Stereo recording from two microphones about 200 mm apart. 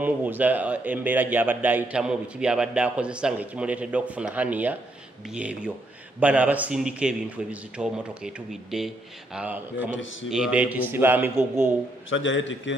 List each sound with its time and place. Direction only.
0.0 s a man's voice: 10° right (ahead or behind)
12.1 s a man's voice: 70° left (ahead or behind)